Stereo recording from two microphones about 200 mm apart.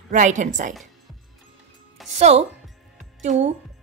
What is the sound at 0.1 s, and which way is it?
Speech, 40° right (ahead or behind).